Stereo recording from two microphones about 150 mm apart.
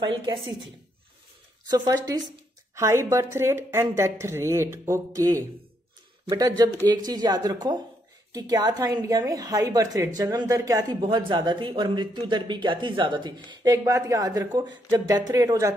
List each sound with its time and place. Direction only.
0.0 s a woman's voice: 30° right (ahead or behind)
2.7 s a woman's voice: 20° right (ahead or behind)